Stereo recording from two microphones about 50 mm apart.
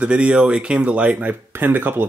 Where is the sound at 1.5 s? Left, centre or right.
Right.